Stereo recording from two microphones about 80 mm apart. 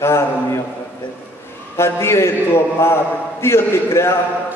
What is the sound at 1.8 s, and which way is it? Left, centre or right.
A man's voice, left.